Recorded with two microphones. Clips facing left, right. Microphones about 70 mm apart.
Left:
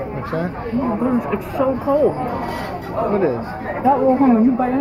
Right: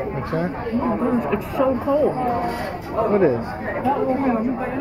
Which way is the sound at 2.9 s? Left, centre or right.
Centre.